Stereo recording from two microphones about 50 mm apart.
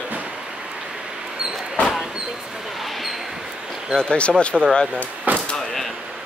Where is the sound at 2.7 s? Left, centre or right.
Centre.